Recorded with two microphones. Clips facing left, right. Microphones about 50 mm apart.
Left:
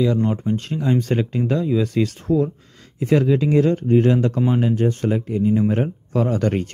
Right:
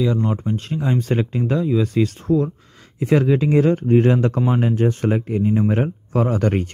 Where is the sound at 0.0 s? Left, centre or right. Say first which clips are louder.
Left 1 dB; centre.